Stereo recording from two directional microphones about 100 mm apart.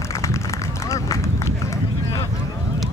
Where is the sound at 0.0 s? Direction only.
30° left (ahead or behind).